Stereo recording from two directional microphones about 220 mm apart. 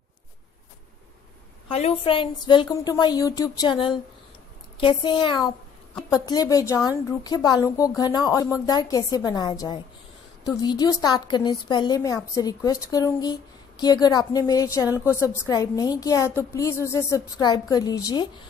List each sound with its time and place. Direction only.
1.7 s a woman's voice: 25° left (ahead or behind)